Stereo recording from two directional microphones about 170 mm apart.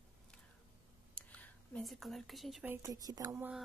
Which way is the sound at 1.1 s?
10° left (ahead or behind).